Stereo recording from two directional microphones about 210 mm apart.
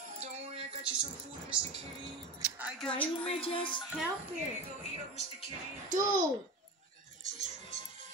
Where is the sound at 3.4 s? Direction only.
25° left (ahead or behind).